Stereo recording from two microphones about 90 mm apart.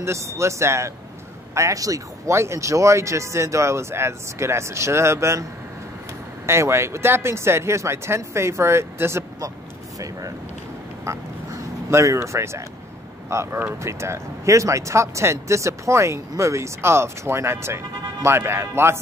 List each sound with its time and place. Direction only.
0.0 s speech: 30° right (ahead or behind)
6.4 s speech: 30° right (ahead or behind)
9.9 s speech: 40° right (ahead or behind)
11.9 s speech: 30° right (ahead or behind)